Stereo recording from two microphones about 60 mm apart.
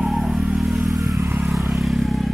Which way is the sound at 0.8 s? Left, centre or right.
Right.